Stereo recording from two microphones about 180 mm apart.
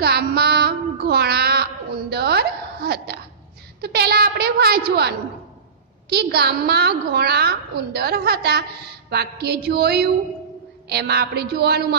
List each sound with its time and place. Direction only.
0.0 s child singing: 60° right (ahead or behind)
3.8 s a woman's voice: 60° right (ahead or behind)